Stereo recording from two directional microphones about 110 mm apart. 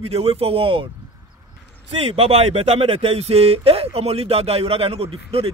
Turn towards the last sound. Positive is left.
turn(degrees=-60)  # may be behind; listen again after turning